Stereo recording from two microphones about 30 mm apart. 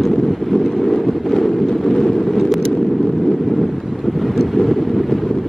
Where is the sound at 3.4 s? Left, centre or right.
Centre.